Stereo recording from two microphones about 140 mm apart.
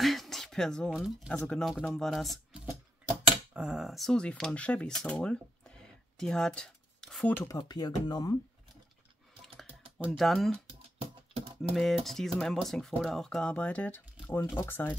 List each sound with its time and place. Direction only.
0.0 s a sound: centre (ahead or behind)
1.5 s speech: centre (ahead or behind)
7.4 s speech: 25° left (ahead or behind)
10.1 s speech: centre (ahead or behind)
10.7 s a sound: 40° right (ahead or behind)
11.7 s speech: centre (ahead or behind)